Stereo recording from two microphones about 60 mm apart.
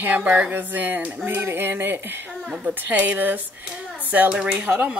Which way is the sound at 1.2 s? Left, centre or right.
Right.